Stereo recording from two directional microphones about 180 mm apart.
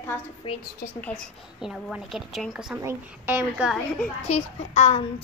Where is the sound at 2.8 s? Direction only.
10° right (ahead or behind).